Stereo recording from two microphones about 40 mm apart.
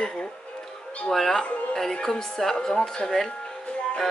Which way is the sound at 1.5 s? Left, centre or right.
Left.